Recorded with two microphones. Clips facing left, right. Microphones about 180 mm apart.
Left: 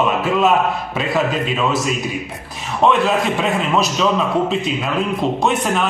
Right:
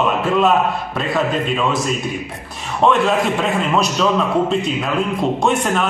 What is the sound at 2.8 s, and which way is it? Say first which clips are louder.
A man's voice: even; centre (ahead or behind).